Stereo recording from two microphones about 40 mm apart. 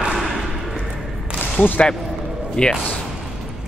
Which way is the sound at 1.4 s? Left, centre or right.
Left.